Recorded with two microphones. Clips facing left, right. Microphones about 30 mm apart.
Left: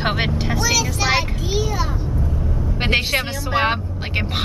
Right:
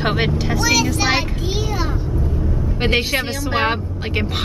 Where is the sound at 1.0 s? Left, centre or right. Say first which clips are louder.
Right 1 dB; centre.